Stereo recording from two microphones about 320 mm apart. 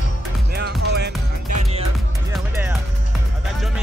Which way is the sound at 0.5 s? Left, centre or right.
Right.